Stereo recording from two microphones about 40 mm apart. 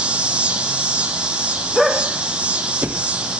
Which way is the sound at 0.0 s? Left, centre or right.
Right.